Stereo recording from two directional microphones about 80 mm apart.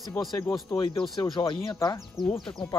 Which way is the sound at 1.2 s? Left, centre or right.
Left.